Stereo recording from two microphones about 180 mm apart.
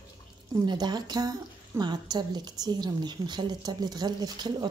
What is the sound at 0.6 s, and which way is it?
A woman's voice, 25° right (ahead or behind).